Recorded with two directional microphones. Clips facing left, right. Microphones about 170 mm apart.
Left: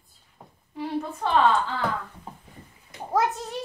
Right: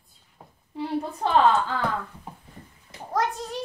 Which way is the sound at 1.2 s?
35° right (ahead or behind).